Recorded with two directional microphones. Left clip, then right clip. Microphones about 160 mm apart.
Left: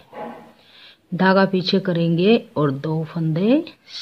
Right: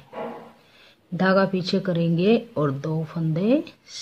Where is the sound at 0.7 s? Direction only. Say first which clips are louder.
Left 5 dB; 20° left (ahead or behind).